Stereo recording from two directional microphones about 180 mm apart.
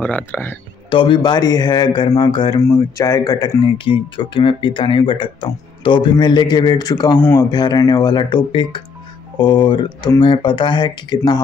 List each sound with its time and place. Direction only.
0.0 s speech: 10° left (ahead or behind)
0.8 s speech: 30° left (ahead or behind)
7.2 s speech: 10° left (ahead or behind)
7.5 s speech: 25° left (ahead or behind)